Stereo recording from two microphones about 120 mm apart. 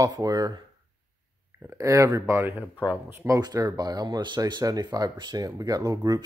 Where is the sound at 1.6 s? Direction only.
25° right (ahead or behind).